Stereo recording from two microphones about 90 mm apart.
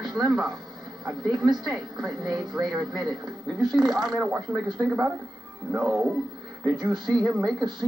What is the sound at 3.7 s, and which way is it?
A woman's voice, centre (ahead or behind).